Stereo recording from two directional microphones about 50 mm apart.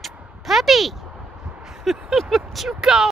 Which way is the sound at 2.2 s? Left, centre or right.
Centre.